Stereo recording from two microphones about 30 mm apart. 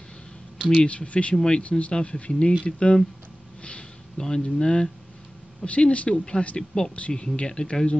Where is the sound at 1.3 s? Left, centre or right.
Left.